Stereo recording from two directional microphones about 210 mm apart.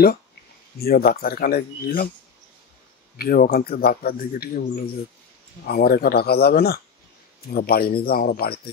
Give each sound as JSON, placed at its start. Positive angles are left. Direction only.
{"t": 0.7, "sound": "a man's voice", "side_deg": 45}
{"t": 3.2, "sound": "a man's voice", "side_deg": 45}